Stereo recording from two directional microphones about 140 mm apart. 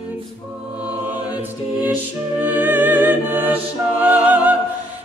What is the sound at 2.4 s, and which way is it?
Music, 15° right (ahead or behind).